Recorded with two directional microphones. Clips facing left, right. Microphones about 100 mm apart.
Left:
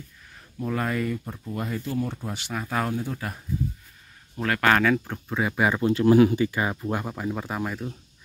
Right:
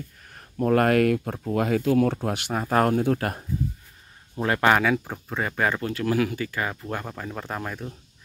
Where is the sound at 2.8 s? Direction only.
60° right (ahead or behind).